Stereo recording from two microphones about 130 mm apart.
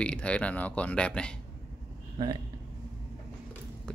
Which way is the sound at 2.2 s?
40° right (ahead or behind).